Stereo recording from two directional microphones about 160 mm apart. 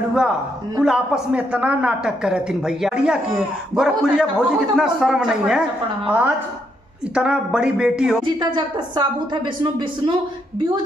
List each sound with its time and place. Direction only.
0.7 s a woman's voice: 5° right (ahead or behind)
8.2 s a woman's voice: 30° right (ahead or behind)